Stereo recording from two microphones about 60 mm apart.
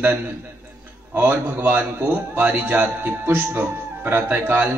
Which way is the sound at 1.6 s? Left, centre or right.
Right.